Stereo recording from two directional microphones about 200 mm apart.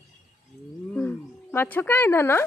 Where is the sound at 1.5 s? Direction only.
10° left (ahead or behind).